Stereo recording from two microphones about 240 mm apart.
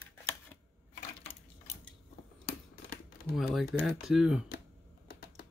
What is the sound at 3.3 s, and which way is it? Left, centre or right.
Speech, centre.